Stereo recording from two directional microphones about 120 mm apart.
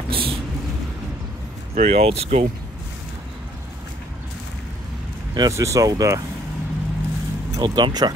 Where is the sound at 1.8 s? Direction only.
65° right (ahead or behind).